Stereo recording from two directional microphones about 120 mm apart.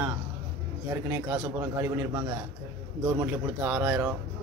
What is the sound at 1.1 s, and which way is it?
Speech, 25° right (ahead or behind).